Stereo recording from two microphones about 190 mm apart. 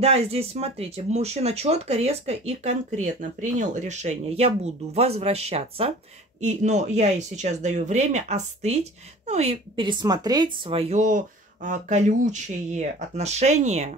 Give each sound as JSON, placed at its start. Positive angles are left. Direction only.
{"t": 0.0, "sound": "speech", "side_deg": -30}